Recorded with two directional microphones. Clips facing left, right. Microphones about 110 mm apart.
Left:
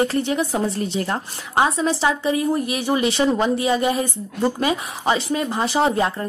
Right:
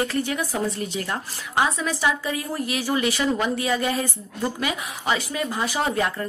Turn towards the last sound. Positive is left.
turn(degrees=25)  # may be behind; listen again after turning